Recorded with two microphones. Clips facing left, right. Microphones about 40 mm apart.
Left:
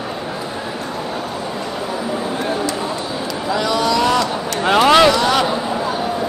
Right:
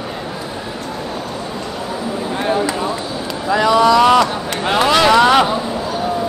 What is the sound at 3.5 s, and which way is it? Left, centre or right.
Vehicle, centre.